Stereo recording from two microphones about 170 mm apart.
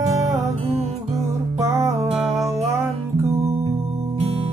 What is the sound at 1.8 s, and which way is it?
Music, 15° right (ahead or behind).